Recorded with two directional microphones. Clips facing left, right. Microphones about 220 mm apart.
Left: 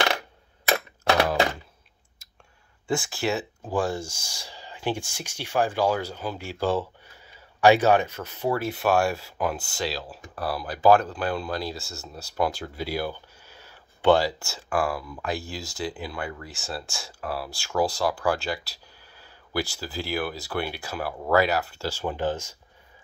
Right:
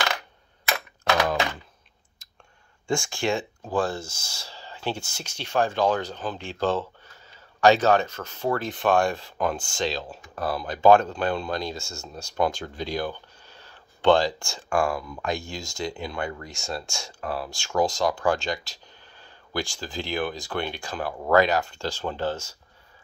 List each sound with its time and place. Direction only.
0.7 s typewriter: 35° left (ahead or behind)
2.9 s speech: 5° left (ahead or behind)